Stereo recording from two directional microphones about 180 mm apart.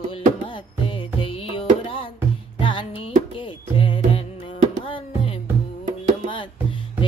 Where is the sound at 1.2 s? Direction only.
30° left (ahead or behind).